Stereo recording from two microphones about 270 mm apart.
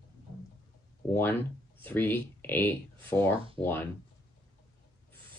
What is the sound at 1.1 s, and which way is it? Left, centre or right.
Speech, centre.